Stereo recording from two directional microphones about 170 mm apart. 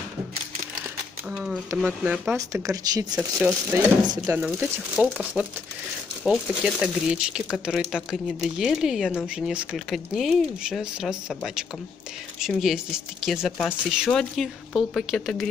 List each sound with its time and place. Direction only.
1.3 s a sound: 5° right (ahead or behind)
1.8 s speech: 5° right (ahead or behind)
2.3 s speech: 20° right (ahead or behind)
3.2 s speech: centre (ahead or behind)
3.7 s speech: 15° right (ahead or behind)
4.4 s speech: 5° right (ahead or behind)